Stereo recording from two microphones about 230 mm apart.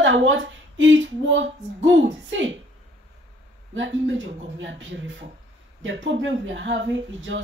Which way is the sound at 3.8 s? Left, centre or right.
Right.